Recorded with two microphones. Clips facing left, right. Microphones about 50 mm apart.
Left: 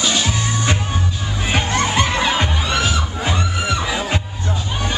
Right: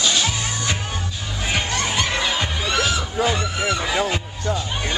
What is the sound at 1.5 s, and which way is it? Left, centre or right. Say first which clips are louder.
Music: left 4 dB; left.